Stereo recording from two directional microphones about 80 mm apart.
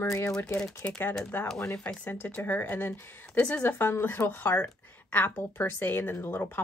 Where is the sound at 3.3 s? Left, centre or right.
Centre.